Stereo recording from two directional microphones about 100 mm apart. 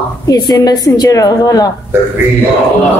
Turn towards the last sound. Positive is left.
turn(degrees=40)  # may be behind; listen again after turning